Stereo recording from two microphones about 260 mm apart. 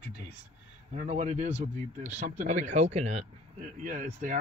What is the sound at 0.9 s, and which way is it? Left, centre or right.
Speech, right.